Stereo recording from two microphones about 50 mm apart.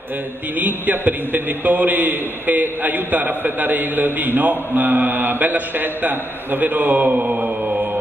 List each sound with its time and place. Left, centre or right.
0.6 s a man's voice: right